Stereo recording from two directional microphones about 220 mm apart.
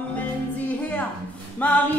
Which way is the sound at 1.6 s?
10° left (ahead or behind).